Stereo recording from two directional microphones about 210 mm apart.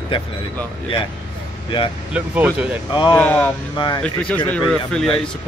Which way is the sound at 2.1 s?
5° right (ahead or behind).